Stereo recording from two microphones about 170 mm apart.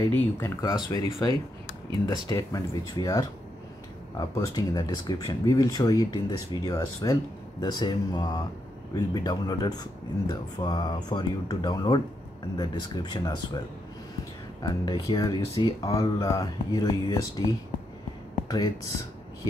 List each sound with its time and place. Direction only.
0.1 s speech: 20° left (ahead or behind)
2.0 s speech: 20° left (ahead or behind)
14.6 s speech: 25° left (ahead or behind)